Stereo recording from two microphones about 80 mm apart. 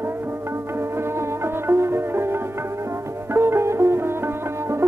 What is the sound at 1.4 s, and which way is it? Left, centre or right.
Music, right.